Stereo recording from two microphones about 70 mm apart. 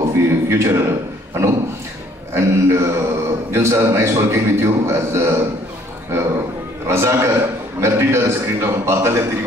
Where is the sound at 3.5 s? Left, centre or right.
Right.